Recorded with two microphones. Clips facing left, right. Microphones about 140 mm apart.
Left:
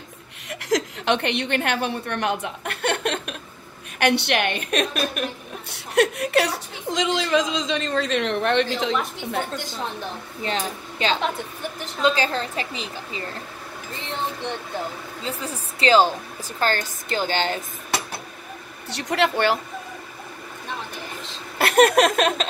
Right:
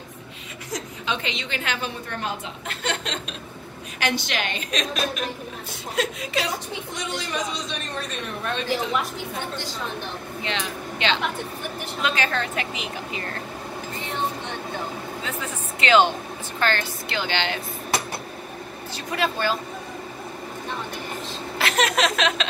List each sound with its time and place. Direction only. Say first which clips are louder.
0.7 s a woman's voice: left 8 dB; 80° left
10.4 s a woman's voice: left 3 dB; 40° left (ahead or behind)
15.2 s a woman's voice: left 1 dB; 35° left (ahead or behind)
18.9 s speech: left 4 dB; 70° left (ahead or behind)
21.5 s laughter: left 7 dB; 55° left (ahead or behind)